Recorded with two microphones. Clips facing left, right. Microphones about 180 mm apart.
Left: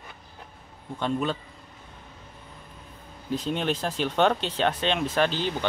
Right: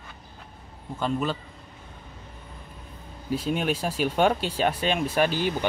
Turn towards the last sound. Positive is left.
turn(degrees=-10)  # may be behind; listen again after turning